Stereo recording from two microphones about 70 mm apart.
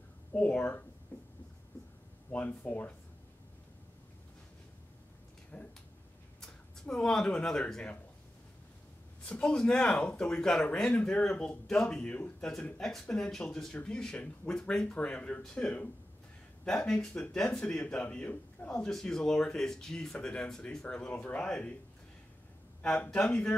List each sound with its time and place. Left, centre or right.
0.3 s speech: centre
1.1 s writing: left
2.3 s speech: left
5.5 s speech: left
6.4 s speech: centre
9.2 s speech: centre
20.8 s speech: left
22.8 s speech: left